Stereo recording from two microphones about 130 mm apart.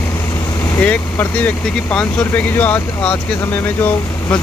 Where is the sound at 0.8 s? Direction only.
10° left (ahead or behind).